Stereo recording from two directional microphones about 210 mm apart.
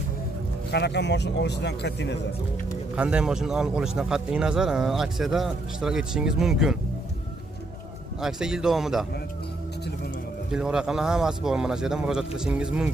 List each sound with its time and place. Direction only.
0.7 s speech: 50° left (ahead or behind)
3.0 s a man's voice: 5° right (ahead or behind)
8.2 s a man's voice: 5° right (ahead or behind)
10.5 s a man's voice: 5° right (ahead or behind)